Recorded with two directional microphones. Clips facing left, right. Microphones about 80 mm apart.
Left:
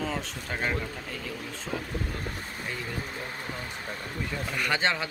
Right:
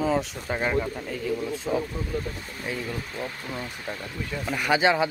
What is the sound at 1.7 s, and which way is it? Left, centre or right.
Speech, right.